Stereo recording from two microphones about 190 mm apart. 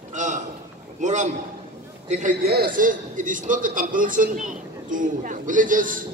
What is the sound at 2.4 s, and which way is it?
A man's voice, 55° right (ahead or behind).